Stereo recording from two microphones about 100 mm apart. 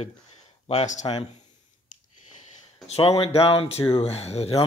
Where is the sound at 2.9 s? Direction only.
80° left.